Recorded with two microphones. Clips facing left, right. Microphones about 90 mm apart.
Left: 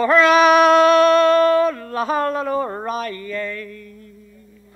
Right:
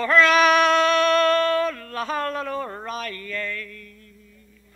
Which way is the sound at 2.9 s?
10° left (ahead or behind).